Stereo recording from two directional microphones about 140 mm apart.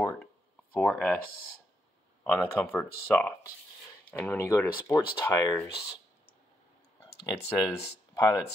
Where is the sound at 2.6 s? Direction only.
15° left (ahead or behind).